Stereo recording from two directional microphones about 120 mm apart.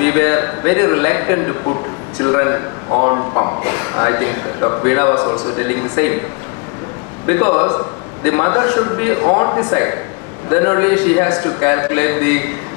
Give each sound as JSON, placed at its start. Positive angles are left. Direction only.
{"t": 0.0, "sound": "a man's voice", "side_deg": 20}
{"t": 7.2, "sound": "a man's voice", "side_deg": 20}